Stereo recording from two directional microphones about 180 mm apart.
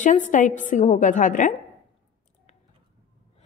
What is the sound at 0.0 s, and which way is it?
A woman's voice, 45° left (ahead or behind).